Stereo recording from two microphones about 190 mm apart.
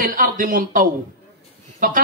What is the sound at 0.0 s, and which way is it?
Speech, 45° right (ahead or behind).